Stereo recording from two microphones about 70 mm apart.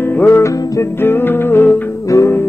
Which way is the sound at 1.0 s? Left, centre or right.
Left.